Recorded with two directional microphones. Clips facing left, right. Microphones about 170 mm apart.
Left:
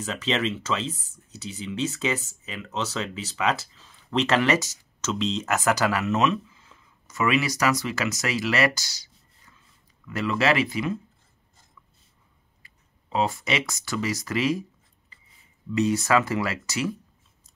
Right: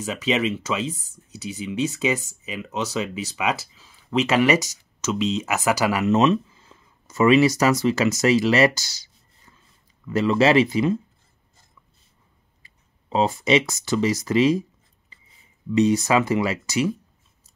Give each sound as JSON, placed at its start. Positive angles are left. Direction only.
{"t": 0.0, "sound": "speech", "side_deg": -10}
{"t": 6.1, "sound": "speech", "side_deg": -30}
{"t": 12.6, "sound": "speech", "side_deg": -25}
{"t": 15.7, "sound": "speech", "side_deg": -20}